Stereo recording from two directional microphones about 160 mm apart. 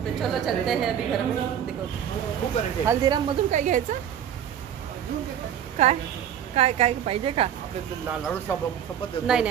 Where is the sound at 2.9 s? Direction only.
25° right (ahead or behind).